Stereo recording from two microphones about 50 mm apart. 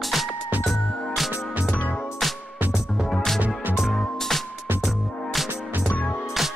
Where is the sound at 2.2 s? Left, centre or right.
Centre.